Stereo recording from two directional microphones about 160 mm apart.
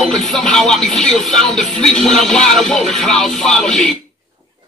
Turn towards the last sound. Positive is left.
turn(degrees=0)  # may be behind; listen again after turning